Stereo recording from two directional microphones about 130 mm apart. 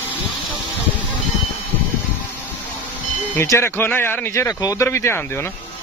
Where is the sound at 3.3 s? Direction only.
20° left (ahead or behind).